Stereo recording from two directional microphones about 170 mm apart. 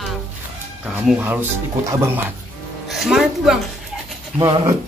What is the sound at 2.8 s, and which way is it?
Speech, centre (ahead or behind).